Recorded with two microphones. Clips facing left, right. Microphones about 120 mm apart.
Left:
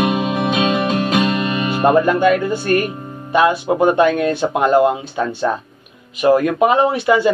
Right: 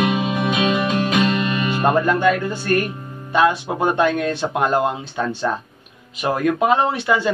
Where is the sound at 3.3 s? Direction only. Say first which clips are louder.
Left 3 dB; 15° left (ahead or behind).